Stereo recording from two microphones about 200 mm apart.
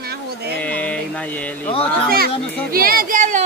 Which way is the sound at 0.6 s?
5° left (ahead or behind).